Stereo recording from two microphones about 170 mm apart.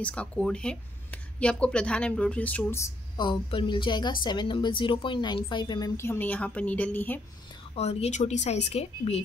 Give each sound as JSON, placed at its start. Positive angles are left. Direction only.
{"t": 0.0, "sound": "speech", "side_deg": 5}
{"t": 3.2, "sound": "a woman's voice", "side_deg": 30}
{"t": 7.7, "sound": "a woman's voice", "side_deg": 35}